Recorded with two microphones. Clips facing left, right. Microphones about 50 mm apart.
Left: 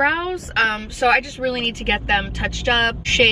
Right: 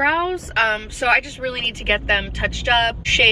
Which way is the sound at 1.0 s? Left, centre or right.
Centre.